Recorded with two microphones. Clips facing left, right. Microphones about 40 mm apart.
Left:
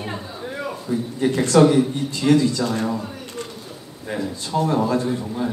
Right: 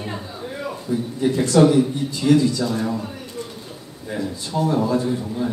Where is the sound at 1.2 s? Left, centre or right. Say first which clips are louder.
Even; left.